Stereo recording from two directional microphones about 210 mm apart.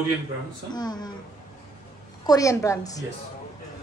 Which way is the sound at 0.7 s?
20° left (ahead or behind).